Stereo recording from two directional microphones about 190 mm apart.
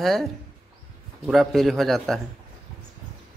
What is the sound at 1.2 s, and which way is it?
Speech, centre (ahead or behind).